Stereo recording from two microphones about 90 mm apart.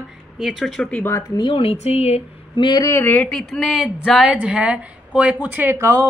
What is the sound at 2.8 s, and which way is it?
Speech, 30° left (ahead or behind).